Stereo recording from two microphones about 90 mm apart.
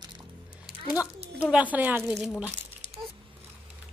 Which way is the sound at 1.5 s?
15° right (ahead or behind).